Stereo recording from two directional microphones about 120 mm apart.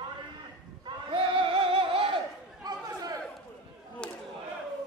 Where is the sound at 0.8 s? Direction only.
45° right (ahead or behind).